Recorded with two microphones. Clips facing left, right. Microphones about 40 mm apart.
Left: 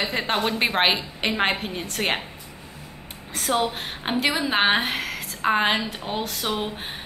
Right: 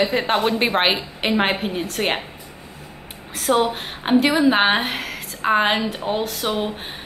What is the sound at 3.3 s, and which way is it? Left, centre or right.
A woman's voice, centre.